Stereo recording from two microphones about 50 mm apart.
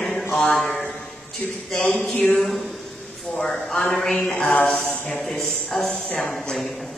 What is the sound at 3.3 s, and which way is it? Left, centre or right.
Mantra, centre.